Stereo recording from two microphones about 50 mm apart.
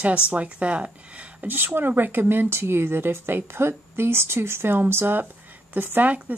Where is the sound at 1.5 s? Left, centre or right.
Right.